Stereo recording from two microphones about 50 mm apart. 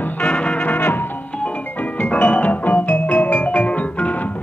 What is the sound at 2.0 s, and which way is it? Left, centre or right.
Music, left.